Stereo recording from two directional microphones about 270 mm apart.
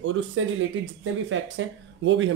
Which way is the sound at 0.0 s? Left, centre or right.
Right.